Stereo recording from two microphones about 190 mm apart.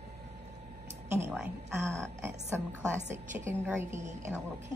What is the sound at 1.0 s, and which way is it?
A woman's voice, 15° right (ahead or behind).